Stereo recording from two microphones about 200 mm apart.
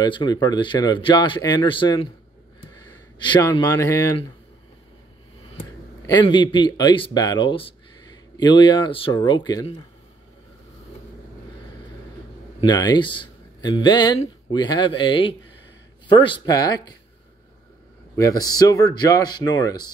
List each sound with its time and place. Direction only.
0.0 s speech: 20° left (ahead or behind)
3.2 s a man's voice: 25° left (ahead or behind)
6.0 s speech: 20° left (ahead or behind)
12.5 s speech: 20° left (ahead or behind)
18.1 s speech: 15° left (ahead or behind)